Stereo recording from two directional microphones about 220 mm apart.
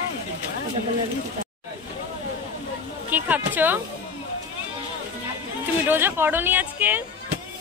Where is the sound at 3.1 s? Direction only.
10° right (ahead or behind).